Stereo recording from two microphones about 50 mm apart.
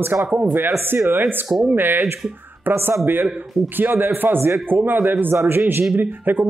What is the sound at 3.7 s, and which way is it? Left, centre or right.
Speech, right.